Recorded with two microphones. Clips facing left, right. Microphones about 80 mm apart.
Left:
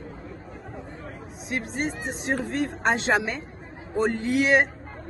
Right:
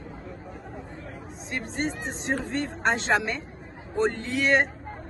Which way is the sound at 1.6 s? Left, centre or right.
Centre.